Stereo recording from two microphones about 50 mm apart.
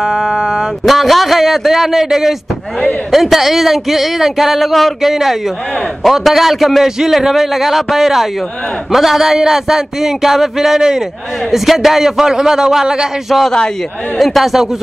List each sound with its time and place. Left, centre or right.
0.0 s a sound: centre
0.8 s speech: centre
13.3 s speech: centre